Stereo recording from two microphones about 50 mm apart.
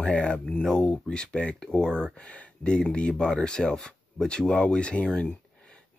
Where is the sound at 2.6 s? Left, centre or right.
Centre.